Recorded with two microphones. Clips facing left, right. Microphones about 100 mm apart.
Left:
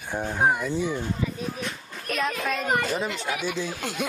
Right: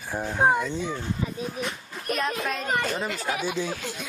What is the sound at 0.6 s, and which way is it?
Speech, 15° left (ahead or behind).